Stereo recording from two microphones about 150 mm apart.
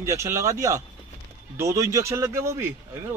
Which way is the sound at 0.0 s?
20° right (ahead or behind).